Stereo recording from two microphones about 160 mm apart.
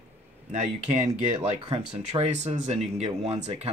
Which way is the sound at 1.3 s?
30° right (ahead or behind).